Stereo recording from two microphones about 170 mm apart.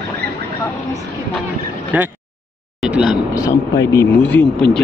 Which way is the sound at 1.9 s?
10° right (ahead or behind).